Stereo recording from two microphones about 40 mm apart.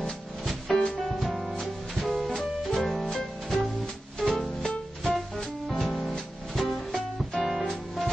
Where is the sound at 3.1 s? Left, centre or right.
Centre.